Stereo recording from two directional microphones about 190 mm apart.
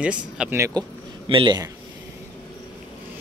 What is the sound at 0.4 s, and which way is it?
Speech, 15° right (ahead or behind).